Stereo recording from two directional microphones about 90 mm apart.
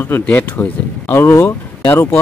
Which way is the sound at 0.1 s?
25° left (ahead or behind).